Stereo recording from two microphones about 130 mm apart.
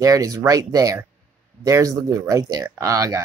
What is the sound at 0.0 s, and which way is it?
Speech, 25° right (ahead or behind).